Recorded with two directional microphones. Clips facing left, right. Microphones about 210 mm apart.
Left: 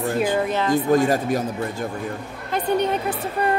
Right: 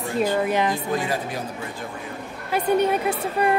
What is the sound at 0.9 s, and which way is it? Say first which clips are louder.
Speech: left 7 dB; 45° left (ahead or behind).